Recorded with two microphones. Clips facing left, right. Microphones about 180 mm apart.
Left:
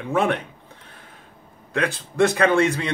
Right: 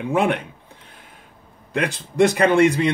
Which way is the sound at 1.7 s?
15° right (ahead or behind).